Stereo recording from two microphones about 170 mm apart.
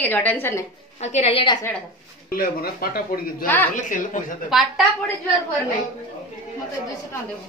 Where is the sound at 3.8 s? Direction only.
50° left (ahead or behind).